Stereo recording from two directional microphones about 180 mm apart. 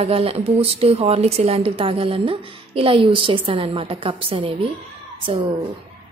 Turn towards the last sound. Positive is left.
turn(degrees=-30)  # may be behind; listen again after turning